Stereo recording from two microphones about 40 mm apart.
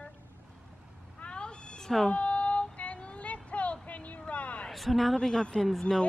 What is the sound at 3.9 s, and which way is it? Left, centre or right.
Vehicle, left.